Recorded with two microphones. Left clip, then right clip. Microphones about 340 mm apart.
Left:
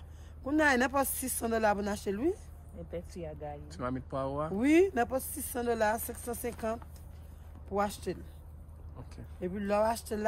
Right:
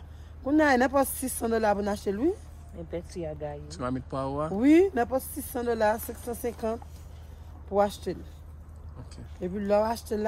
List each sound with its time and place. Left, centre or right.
0.4 s speech: centre
2.9 s speech: right
3.7 s speech: centre